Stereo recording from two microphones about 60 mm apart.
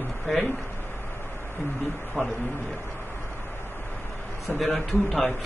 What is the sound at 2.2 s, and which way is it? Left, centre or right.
Speech, centre.